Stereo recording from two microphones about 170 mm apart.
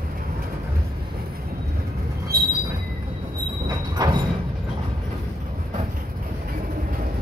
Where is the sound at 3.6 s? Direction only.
25° right (ahead or behind).